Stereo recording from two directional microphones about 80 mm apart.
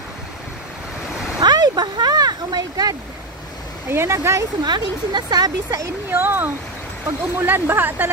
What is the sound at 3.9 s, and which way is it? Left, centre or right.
Speech, right.